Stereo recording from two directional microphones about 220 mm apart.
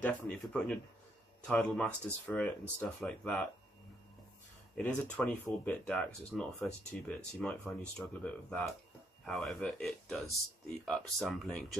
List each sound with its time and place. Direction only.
0.0 s speech: 5° left (ahead or behind)
4.7 s speech: 5° left (ahead or behind)